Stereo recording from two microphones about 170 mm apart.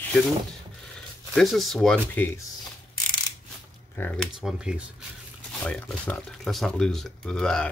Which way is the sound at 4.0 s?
10° left (ahead or behind).